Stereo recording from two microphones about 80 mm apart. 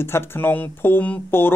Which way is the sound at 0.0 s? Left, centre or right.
Left.